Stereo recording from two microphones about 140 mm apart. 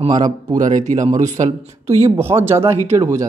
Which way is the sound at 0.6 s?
65° right (ahead or behind).